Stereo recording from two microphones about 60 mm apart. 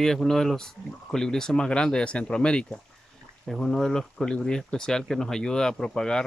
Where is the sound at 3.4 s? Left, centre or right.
Centre.